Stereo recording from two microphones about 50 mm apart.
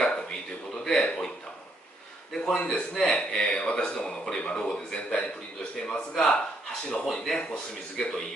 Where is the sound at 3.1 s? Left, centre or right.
Centre.